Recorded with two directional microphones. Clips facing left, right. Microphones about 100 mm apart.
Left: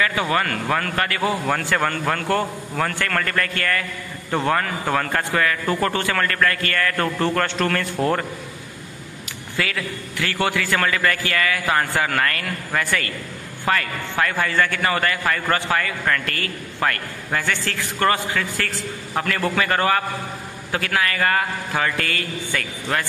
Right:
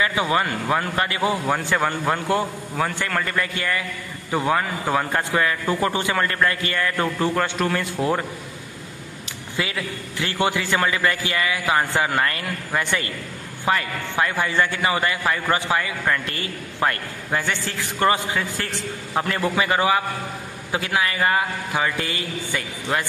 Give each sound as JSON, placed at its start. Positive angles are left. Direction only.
{"t": 0.0, "sound": "speech", "side_deg": -20}
{"t": 9.6, "sound": "a man's voice", "side_deg": -20}